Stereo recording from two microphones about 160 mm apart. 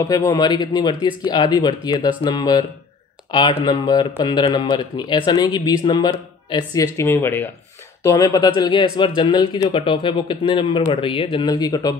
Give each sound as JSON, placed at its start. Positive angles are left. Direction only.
{"t": 0.1, "sound": "speech", "side_deg": 20}